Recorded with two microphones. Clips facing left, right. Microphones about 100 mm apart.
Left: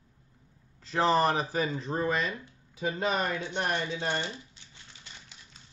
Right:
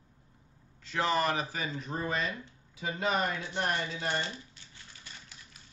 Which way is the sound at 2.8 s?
30° left (ahead or behind).